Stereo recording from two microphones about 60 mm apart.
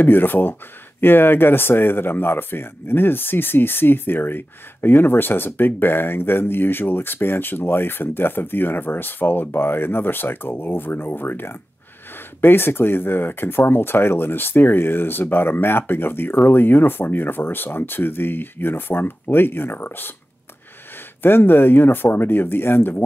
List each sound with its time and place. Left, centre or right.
0.0 s speech: left
21.2 s speech: left